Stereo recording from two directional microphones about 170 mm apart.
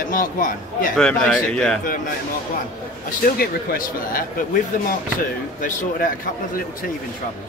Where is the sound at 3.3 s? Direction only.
60° left (ahead or behind).